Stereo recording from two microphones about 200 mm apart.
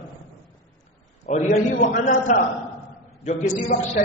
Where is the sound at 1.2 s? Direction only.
40° left (ahead or behind).